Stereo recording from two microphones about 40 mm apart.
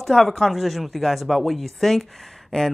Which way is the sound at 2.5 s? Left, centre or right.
Centre.